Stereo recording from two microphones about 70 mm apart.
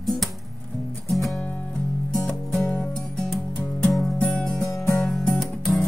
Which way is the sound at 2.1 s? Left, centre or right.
Centre.